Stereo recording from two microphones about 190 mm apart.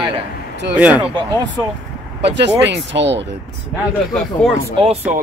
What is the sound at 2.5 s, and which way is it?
Speech, 65° right (ahead or behind).